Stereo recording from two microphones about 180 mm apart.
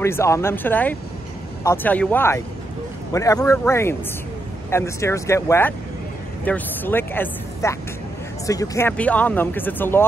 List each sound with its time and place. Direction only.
0.0 s a man's voice: 15° left (ahead or behind)